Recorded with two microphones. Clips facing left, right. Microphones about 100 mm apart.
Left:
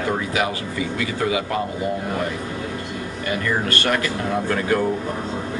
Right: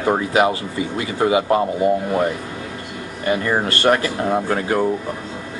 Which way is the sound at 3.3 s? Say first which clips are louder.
Right 4 dB; 25° right (ahead or behind).